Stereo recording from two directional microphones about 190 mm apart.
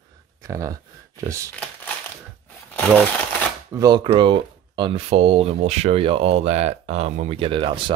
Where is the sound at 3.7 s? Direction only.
20° right (ahead or behind).